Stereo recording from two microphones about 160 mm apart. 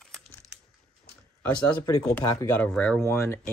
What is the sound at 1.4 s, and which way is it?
Speech, 15° left (ahead or behind).